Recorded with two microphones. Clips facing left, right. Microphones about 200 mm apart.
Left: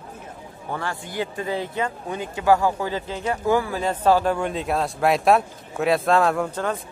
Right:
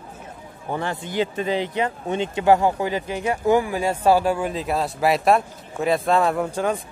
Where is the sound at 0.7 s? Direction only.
20° right (ahead or behind).